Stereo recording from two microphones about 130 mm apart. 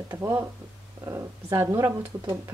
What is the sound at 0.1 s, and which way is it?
Speech, 15° right (ahead or behind).